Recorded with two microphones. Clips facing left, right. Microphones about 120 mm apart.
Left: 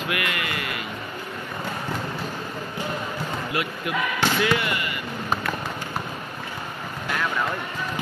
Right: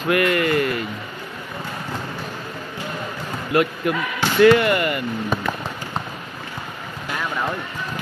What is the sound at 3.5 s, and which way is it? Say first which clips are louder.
Speech: right 9 dB; 45° right (ahead or behind).